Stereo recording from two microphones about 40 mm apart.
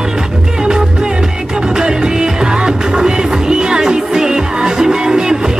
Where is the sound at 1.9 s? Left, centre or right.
Centre.